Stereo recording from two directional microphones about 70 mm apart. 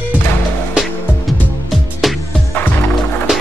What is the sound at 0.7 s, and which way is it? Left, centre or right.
Music, centre.